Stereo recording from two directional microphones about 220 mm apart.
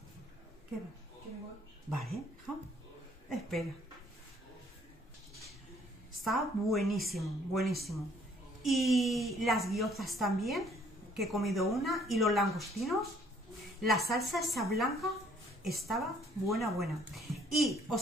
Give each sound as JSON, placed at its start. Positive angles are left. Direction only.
{"t": 2.0, "sound": "a woman's voice", "side_deg": 0}
{"t": 6.2, "sound": "speech", "side_deg": 0}